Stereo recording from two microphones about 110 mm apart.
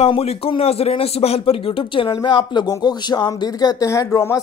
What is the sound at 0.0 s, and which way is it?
Speech, 65° left (ahead or behind).